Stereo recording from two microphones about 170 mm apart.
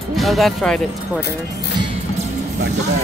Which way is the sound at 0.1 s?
Centre (ahead or behind).